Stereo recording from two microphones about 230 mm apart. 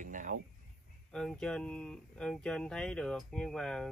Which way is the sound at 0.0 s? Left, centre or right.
Right.